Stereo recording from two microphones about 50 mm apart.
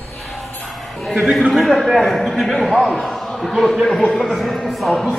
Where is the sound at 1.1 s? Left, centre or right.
Centre.